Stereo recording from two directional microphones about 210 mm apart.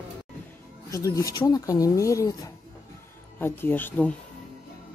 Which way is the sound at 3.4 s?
10° left (ahead or behind).